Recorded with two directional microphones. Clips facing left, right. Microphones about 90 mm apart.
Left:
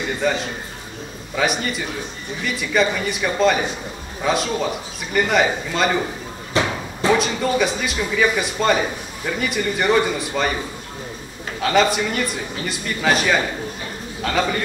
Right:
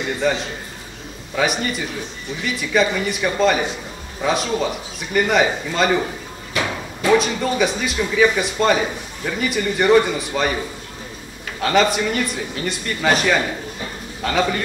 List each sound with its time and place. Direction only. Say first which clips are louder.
0.2 s speech: right 1 dB; centre (ahead or behind)
6.5 s a sound: left 3 dB; 30° left (ahead or behind)
7.1 s speech: right 1 dB; centre (ahead or behind)
11.6 s speech: right 1 dB; centre (ahead or behind)